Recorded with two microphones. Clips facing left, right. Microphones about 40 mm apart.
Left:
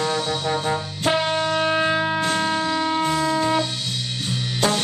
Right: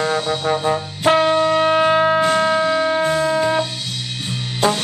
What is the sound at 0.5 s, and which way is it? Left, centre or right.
Music, centre.